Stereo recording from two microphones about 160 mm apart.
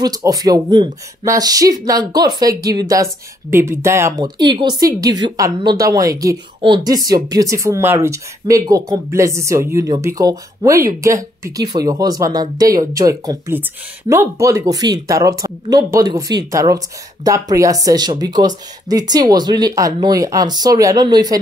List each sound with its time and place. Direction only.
0.0 s speech: 25° right (ahead or behind)